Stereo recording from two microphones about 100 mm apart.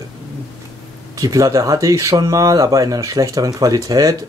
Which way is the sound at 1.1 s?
35° right (ahead or behind).